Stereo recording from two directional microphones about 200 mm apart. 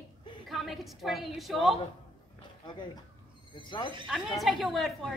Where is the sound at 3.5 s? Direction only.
25° left (ahead or behind).